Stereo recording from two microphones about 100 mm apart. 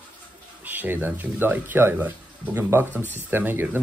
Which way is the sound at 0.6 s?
20° right (ahead or behind).